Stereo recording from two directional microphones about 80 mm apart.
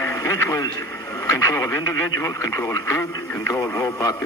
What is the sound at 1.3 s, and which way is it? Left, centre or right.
Speech, left.